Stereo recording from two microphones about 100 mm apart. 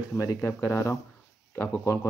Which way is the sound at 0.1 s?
30° left (ahead or behind).